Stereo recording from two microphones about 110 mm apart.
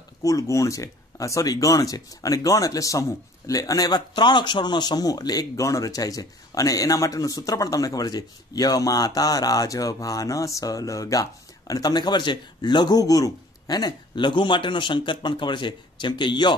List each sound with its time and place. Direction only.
0.2 s speech: 30° left (ahead or behind)